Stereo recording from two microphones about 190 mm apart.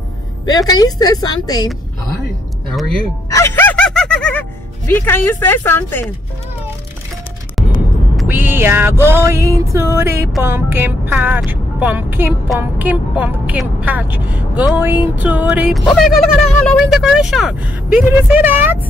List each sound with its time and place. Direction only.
0.5 s a woman's voice: 20° left (ahead or behind)
3.3 s music: 15° left (ahead or behind)
4.9 s speech: 10° left (ahead or behind)
8.2 s speech: 10° right (ahead or behind)